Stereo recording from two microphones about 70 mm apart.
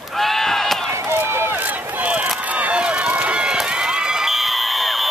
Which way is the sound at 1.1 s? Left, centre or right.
Right.